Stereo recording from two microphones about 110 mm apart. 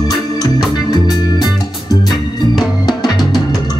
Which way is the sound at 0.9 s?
40° left (ahead or behind).